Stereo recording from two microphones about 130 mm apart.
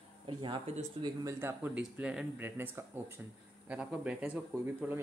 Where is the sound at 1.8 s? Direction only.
5° right (ahead or behind).